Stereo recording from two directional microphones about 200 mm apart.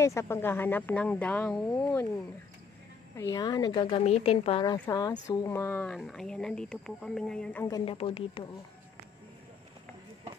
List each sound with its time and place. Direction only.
0.0 s speech: 15° left (ahead or behind)
3.2 s a woman's voice: 15° left (ahead or behind)
7.6 s a woman's voice: 20° left (ahead or behind)